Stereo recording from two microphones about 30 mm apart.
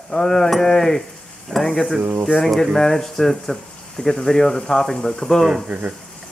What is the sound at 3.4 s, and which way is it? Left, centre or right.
Frying, centre.